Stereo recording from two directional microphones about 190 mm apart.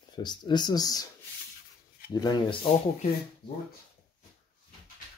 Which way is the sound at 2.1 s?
20° left (ahead or behind).